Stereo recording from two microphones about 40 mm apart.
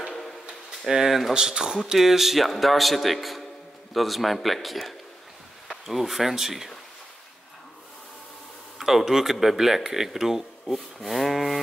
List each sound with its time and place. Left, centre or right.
0.8 s speech: centre
1.3 s speech: centre
8.7 s speech: centre